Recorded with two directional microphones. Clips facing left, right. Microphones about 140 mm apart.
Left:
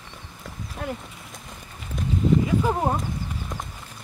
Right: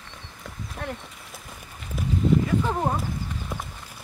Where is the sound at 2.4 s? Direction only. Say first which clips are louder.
Left 2 dB; 10° left (ahead or behind).